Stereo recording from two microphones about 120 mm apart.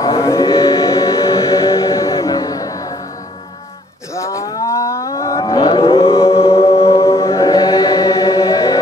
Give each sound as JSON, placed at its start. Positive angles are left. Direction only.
{"t": 0.2, "sound": "chant", "side_deg": 25}
{"t": 0.7, "sound": "music", "side_deg": 30}
{"t": 4.1, "sound": "a sound", "side_deg": 25}
{"t": 5.6, "sound": "a sound", "side_deg": 45}
{"t": 6.2, "sound": "chant", "side_deg": 55}
{"t": 7.0, "sound": "chant", "side_deg": 25}